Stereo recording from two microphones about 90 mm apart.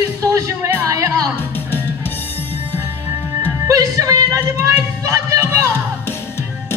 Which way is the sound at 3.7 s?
40° right (ahead or behind).